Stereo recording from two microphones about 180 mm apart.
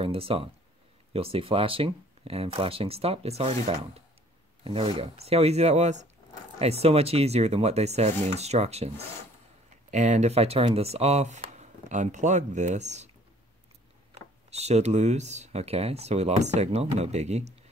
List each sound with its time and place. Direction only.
0.0 s speech: 30° right (ahead or behind)
14.5 s speech: 35° right (ahead or behind)